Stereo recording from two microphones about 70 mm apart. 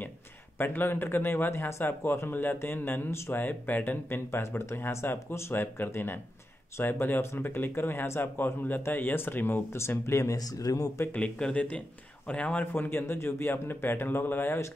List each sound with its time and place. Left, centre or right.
0.6 s speech: left
10.3 s speech: left
11.1 s speech: centre
12.7 s speech: left